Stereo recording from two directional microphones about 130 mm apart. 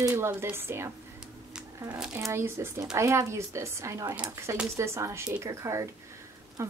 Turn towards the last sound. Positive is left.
turn(degrees=-20)  # may be behind; listen again after turning